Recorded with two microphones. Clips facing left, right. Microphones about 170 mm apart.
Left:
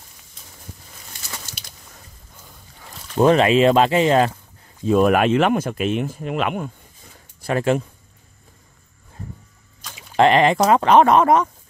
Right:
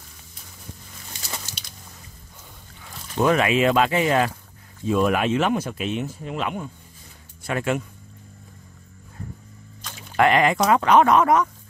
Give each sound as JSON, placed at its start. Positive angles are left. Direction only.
{"t": 3.2, "sound": "speech", "side_deg": 30}
{"t": 4.8, "sound": "speech", "side_deg": 50}
{"t": 7.4, "sound": "speech", "side_deg": 35}
{"t": 10.1, "sound": "speech", "side_deg": 25}